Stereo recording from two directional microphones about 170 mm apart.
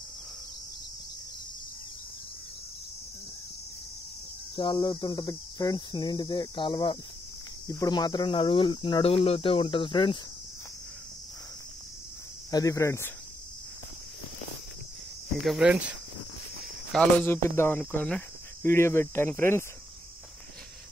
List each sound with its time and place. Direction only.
4.6 s speech: 25° left (ahead or behind)
12.4 s speech: 20° left (ahead or behind)
15.4 s speech: 5° right (ahead or behind)
16.9 s speech: 10° left (ahead or behind)